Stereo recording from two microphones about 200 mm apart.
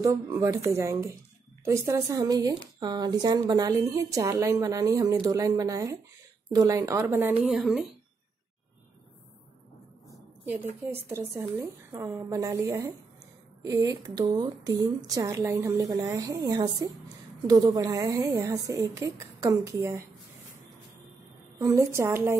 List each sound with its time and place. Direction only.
0.0 s speech: 15° right (ahead or behind)
10.8 s speech: 10° right (ahead or behind)
21.5 s speech: 15° right (ahead or behind)